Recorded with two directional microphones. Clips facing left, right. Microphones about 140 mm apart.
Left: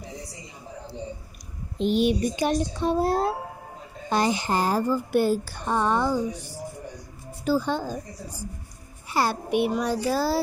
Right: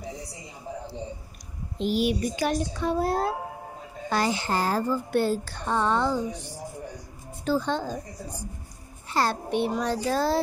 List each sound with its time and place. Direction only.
1.8 s a child's voice: 20° left (ahead or behind); by 10.4 s 5° left (ahead or behind)